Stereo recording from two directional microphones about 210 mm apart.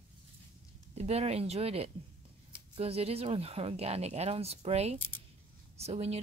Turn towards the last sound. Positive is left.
turn(degrees=-30)  # may be behind; listen again after turning